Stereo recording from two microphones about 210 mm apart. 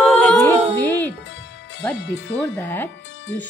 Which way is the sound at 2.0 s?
60° left (ahead or behind).